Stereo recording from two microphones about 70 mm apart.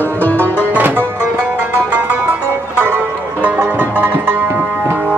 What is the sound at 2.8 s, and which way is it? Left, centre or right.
Music, right.